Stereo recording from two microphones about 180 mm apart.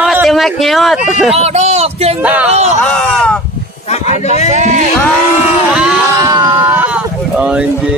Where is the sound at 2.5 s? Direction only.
35° right (ahead or behind).